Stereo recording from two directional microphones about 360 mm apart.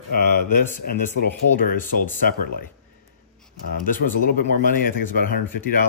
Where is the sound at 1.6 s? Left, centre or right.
Left.